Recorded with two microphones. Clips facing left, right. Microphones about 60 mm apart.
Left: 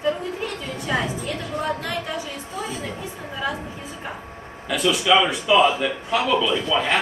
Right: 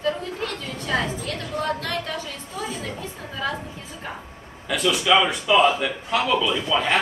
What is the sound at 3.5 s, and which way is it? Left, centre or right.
Speech, centre.